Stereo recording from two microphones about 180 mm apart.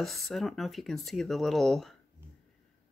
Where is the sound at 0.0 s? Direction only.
Centre (ahead or behind).